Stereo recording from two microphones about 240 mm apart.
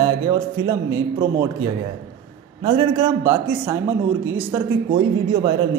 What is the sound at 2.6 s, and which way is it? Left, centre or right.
Speech, centre.